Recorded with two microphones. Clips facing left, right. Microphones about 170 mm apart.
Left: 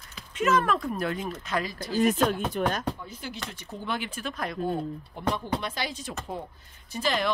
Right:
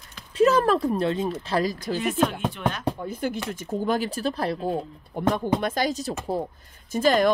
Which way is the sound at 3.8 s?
40° right (ahead or behind).